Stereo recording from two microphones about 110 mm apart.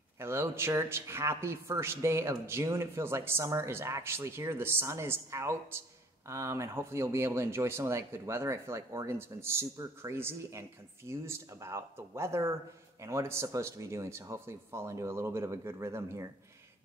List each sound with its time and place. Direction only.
0.2 s speech: 25° right (ahead or behind)